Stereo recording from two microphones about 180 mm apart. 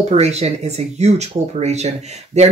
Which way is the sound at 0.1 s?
35° right (ahead or behind).